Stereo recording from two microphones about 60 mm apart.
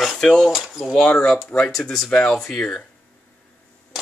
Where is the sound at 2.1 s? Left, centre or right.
Centre.